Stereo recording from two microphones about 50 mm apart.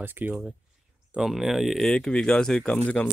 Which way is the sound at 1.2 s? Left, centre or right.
Centre.